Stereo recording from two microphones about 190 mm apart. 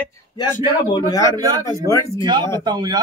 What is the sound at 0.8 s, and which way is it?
A man's voice, 20° left (ahead or behind).